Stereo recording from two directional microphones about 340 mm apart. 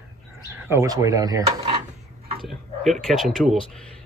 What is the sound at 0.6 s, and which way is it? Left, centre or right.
Speech, centre.